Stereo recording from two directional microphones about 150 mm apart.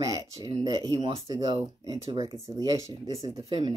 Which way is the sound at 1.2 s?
25° right (ahead or behind).